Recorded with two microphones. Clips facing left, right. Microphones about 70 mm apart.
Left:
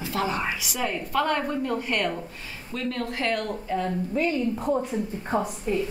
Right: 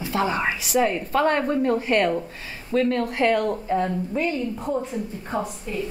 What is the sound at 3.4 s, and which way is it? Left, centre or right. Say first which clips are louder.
Speech: right 5 dB; right.